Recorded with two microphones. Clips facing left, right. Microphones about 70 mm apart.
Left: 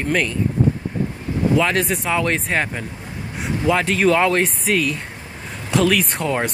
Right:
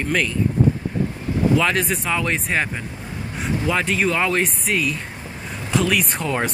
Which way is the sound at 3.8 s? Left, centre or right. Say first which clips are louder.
Left 4 dB; left.